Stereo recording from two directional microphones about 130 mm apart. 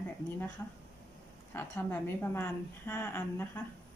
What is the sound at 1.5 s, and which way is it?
A woman's voice, 15° left (ahead or behind).